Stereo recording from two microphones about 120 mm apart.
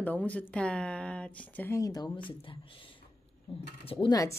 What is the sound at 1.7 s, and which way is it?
Speech, 30° left (ahead or behind).